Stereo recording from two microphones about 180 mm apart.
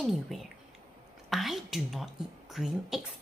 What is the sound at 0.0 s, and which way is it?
A woman's voice, centre (ahead or behind).